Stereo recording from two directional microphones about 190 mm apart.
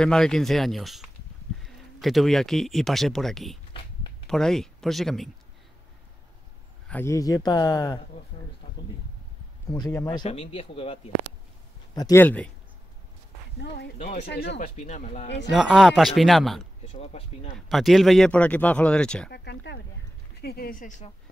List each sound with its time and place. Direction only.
0.0 s speech: 5° left (ahead or behind)
6.9 s speech: 15° left (ahead or behind)
9.8 s speech: 15° left (ahead or behind)
10.2 s speech: 30° left (ahead or behind)
11.9 s speech: 15° left (ahead or behind)
13.6 s speech: 60° left (ahead or behind)
13.9 s speech: 40° left (ahead or behind)
14.2 s speech: 60° left (ahead or behind)
14.8 s speech: 40° left (ahead or behind)
15.2 s speech: 65° left (ahead or behind)
15.5 s speech: centre (ahead or behind)
16.8 s speech: 35° left (ahead or behind)
17.6 s speech: centre (ahead or behind)
19.3 s speech: 60° left (ahead or behind); by 21.1 s 45° left (ahead or behind)